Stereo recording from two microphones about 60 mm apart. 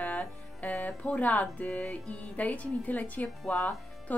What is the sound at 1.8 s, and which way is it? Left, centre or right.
Music, centre.